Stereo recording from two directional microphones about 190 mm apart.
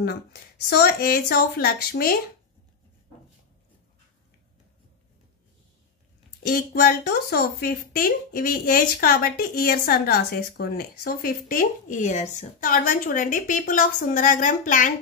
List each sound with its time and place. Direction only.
0.0 s speech: 55° left (ahead or behind)
6.4 s speech: 55° left (ahead or behind)